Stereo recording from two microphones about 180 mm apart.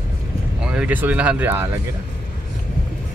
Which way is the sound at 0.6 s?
5° right (ahead or behind).